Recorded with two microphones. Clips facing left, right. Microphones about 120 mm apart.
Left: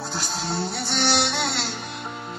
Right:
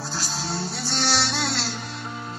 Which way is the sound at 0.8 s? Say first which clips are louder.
Left 2 dB; 60° left (ahead or behind).